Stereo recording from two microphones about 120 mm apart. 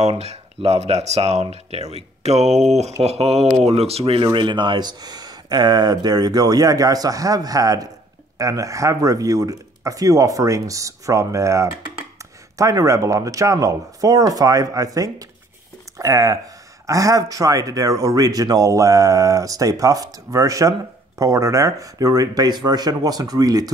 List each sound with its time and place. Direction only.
0.2 s a man's voice: 65° right (ahead or behind); by 23.7 s 30° right (ahead or behind)